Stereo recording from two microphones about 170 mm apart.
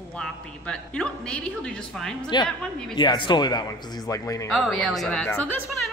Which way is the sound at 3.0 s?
25° left (ahead or behind).